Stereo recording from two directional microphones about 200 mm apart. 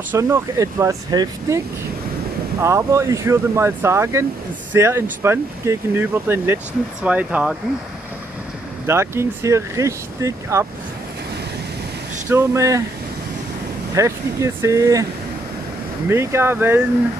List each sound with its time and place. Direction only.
0.1 s speech: 15° right (ahead or behind)
2.6 s speech: 15° right (ahead or behind)
8.8 s speech: 15° right (ahead or behind)
12.3 s speech: 15° right (ahead or behind)
13.9 s speech: 15° right (ahead or behind)
16.1 s speech: 10° right (ahead or behind)